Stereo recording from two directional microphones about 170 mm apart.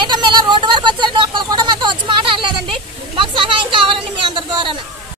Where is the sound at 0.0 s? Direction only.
25° right (ahead or behind).